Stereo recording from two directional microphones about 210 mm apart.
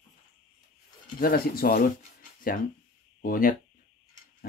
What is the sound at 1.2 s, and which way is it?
Speech, 45° left (ahead or behind).